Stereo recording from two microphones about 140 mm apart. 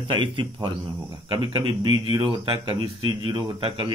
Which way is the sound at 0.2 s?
30° right (ahead or behind).